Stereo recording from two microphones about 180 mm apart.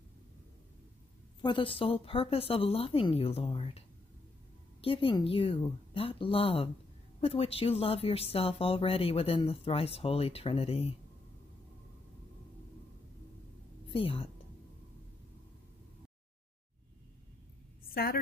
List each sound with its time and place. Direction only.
1.4 s speech: 25° left (ahead or behind)
4.8 s speech: 30° left (ahead or behind)
13.8 s a woman's voice: 30° left (ahead or behind)
17.8 s a woman's voice: 55° left (ahead or behind)